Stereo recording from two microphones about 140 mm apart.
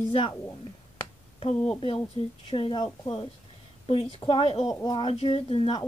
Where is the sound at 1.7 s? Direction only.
40° left (ahead or behind).